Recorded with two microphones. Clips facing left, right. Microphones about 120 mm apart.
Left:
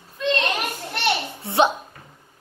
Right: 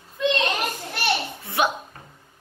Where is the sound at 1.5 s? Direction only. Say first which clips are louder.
Left 5 dB; 25° left (ahead or behind).